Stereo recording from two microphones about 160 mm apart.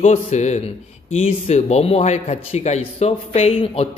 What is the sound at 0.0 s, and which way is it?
A man's voice, 40° left (ahead or behind).